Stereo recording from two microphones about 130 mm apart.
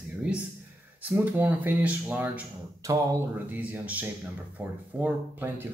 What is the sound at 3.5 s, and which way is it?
Speech, 10° right (ahead or behind).